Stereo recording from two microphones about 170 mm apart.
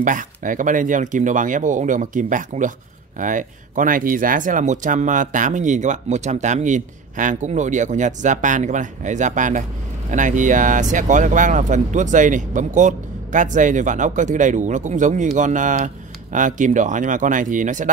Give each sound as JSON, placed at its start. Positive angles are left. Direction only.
{"t": 0.0, "sound": "speech", "side_deg": -50}